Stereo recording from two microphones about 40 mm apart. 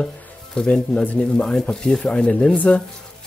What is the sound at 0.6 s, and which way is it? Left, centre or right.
Speech, centre.